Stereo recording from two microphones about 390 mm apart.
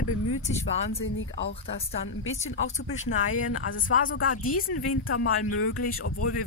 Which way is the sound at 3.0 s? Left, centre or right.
Left.